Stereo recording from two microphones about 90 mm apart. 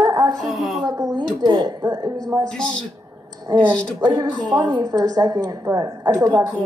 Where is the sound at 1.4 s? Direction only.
50° right (ahead or behind).